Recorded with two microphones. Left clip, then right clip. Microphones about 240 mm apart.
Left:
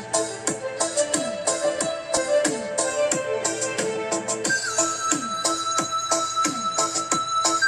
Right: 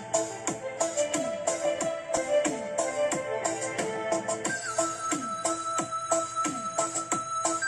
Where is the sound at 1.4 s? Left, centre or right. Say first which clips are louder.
Left 5 dB; left.